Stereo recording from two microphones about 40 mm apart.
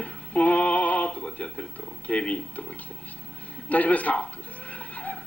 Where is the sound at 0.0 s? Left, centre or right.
Left.